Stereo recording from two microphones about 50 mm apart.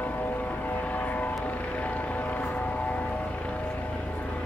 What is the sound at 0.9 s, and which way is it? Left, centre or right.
Vehicle, left.